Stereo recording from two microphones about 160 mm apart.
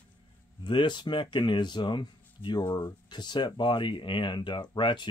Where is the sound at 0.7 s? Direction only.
30° left (ahead or behind).